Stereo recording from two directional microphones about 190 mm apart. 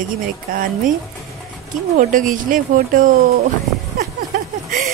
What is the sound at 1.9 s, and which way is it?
Music, 45° right (ahead or behind).